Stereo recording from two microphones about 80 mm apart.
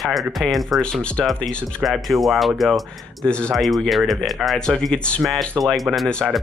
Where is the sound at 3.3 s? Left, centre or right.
Centre.